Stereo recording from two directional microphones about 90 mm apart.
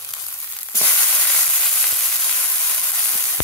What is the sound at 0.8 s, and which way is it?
Sizzle, 20° left (ahead or behind).